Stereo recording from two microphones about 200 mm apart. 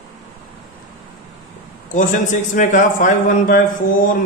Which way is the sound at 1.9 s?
40° left (ahead or behind).